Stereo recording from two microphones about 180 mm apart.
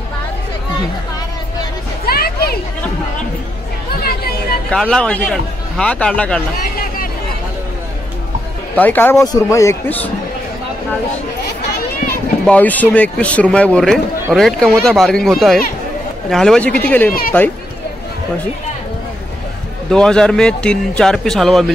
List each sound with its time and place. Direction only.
2.0 s a sound: 60° left (ahead or behind)
4.6 s a man's voice: 5° left (ahead or behind)
8.7 s speech: 10° left (ahead or behind)
12.4 s a man's voice: 10° left (ahead or behind)
19.9 s a man's voice: 5° left (ahead or behind)